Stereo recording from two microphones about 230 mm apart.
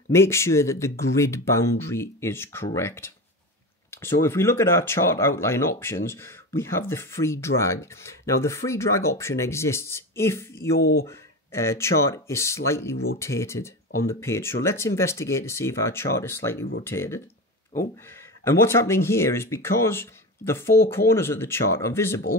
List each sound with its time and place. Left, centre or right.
0.1 s speech: centre
10.8 s speech: left
11.1 s speech: centre